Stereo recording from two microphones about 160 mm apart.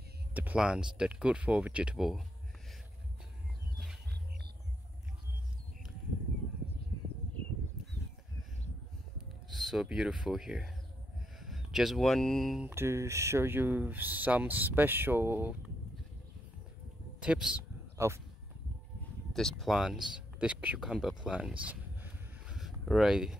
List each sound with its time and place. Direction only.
0.3 s speech: 10° right (ahead or behind)
9.5 s speech: centre (ahead or behind)
12.6 s speech: 15° right (ahead or behind)
17.2 s speech: 5° right (ahead or behind)
17.9 s speech: 15° right (ahead or behind)
19.3 s speech: centre (ahead or behind)